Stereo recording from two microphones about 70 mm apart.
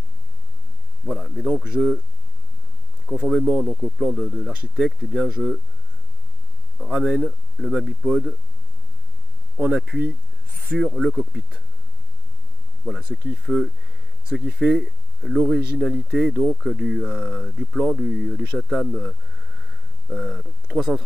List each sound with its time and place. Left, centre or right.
1.0 s a sound: centre
1.5 s speech: centre
3.1 s speech: centre
4.5 s speech: centre
6.8 s speech: centre
9.6 s speech: centre
12.8 s speech: centre
17.0 s speech: centre